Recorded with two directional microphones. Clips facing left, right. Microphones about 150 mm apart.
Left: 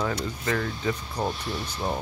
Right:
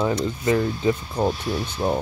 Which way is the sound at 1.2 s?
5° right (ahead or behind).